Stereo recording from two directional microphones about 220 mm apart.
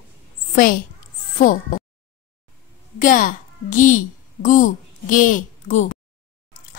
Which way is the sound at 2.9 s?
35° left (ahead or behind).